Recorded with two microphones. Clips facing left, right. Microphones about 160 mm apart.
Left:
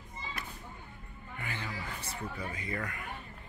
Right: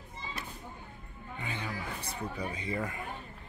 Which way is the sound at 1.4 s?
15° right (ahead or behind).